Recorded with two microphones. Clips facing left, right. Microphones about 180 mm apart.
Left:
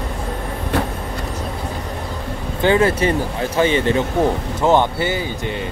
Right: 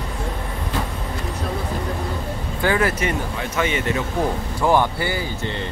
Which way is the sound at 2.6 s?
25° left (ahead or behind).